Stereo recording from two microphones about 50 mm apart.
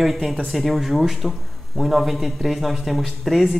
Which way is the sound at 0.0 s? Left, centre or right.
Centre.